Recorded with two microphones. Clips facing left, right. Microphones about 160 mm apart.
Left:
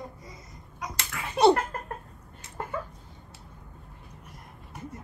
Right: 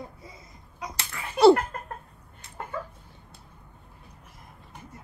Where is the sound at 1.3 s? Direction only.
20° left (ahead or behind).